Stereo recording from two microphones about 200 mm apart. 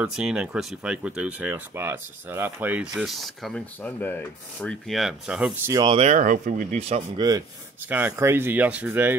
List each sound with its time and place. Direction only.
0.0 s speech: 5° right (ahead or behind)
5.7 s speech: 20° right (ahead or behind)
5.9 s speech: 40° right (ahead or behind)
7.9 s speech: 10° right (ahead or behind)